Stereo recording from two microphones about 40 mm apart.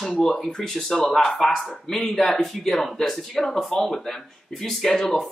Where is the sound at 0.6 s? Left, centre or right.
Centre.